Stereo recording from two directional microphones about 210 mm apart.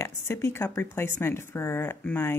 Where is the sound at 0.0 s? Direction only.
15° left (ahead or behind).